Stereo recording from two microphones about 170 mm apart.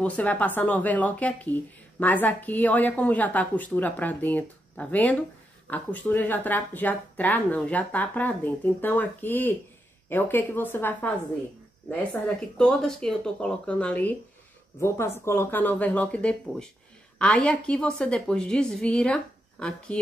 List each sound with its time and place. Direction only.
0.0 s a woman's voice: 10° left (ahead or behind)